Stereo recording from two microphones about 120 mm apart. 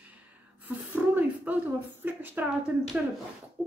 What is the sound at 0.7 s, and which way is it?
Speech, 15° right (ahead or behind).